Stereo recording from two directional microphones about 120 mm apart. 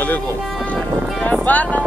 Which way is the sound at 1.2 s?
10° left (ahead or behind).